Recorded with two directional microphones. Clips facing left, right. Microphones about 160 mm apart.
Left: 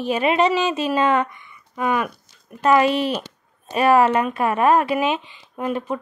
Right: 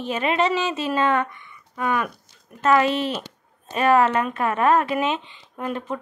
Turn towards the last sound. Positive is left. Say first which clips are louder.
# left 4 dB
turn(degrees=10)  # may be behind; listen again after turning